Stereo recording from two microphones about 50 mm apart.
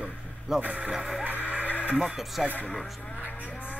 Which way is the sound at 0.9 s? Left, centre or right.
Centre.